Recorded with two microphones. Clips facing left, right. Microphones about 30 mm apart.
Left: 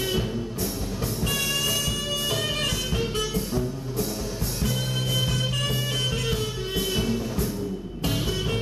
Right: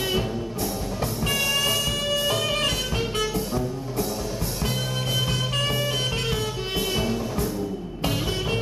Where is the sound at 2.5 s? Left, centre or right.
Right.